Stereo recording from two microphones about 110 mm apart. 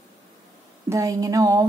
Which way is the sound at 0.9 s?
30° right (ahead or behind).